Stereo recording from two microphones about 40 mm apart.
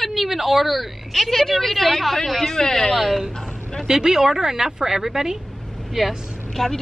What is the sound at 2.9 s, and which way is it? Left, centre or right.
Speech, centre.